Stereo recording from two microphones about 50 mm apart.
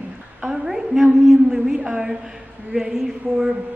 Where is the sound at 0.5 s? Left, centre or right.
Centre.